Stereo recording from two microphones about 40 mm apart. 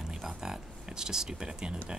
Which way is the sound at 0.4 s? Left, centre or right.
Centre.